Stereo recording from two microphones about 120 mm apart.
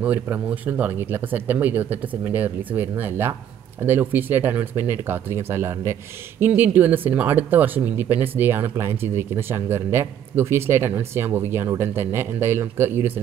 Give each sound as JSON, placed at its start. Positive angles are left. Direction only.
{"t": 0.0, "sound": "speech", "side_deg": -10}